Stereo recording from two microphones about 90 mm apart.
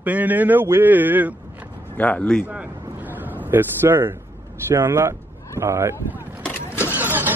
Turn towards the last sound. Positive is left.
turn(degrees=-20)  # may be behind; listen again after turning